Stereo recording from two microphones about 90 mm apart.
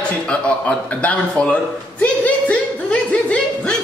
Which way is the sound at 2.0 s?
15° left (ahead or behind).